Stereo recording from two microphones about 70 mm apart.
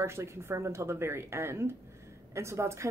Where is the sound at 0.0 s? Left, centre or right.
Right.